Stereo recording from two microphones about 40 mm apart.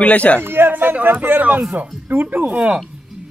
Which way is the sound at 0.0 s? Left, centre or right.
Left.